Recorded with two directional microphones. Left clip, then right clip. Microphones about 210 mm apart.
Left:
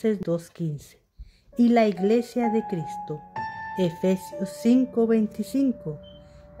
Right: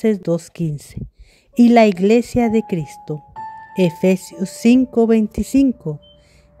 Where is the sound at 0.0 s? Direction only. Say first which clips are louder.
Right 7 dB; 30° right (ahead or behind).